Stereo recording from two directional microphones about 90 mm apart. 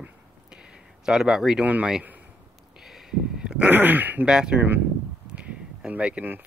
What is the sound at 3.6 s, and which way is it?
Speech, 20° right (ahead or behind).